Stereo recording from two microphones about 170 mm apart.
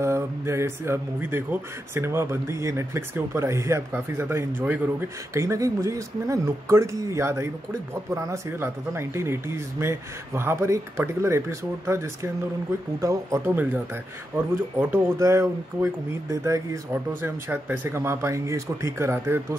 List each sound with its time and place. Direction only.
0.0 s speech: 15° right (ahead or behind)
14.8 s speech: 15° right (ahead or behind)